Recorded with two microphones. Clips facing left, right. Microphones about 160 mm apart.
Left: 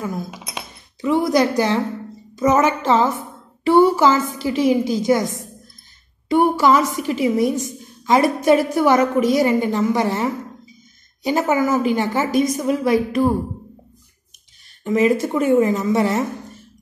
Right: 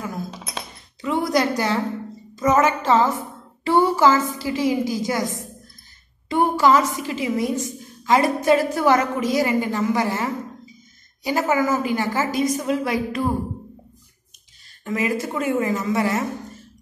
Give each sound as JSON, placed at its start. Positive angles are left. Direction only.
{"t": 0.3, "sound": "music", "side_deg": 15}
{"t": 1.3, "sound": "a woman's voice", "side_deg": 15}
{"t": 6.3, "sound": "a woman's voice", "side_deg": 15}
{"t": 14.9, "sound": "a woman's voice", "side_deg": 20}